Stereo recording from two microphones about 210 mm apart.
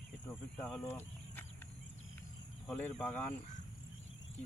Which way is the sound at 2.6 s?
5° left (ahead or behind).